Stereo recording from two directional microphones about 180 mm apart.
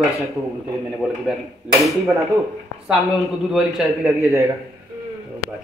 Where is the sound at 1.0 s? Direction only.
10° right (ahead or behind).